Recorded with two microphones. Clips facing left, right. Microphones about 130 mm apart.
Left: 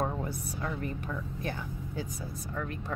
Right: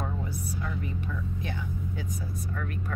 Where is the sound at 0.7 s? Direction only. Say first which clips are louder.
Even; 50° left (ahead or behind); by 2.5 s 30° left (ahead or behind).